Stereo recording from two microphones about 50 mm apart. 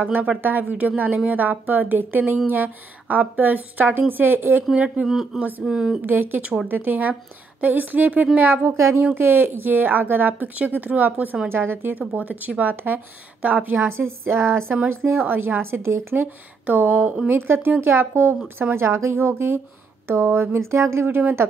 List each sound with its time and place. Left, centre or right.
0.0 s speech: right
4.7 s speech: right
5.0 s speech: centre
6.0 s speech: right
8.7 s speech: right
9.1 s speech: right
11.4 s speech: right
12.2 s speech: right
13.7 s a woman's voice: right
15.2 s speech: right
16.6 s speech: right
17.3 s a woman's voice: right